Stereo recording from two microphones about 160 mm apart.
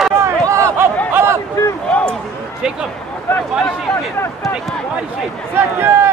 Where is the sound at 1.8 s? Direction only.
5° left (ahead or behind).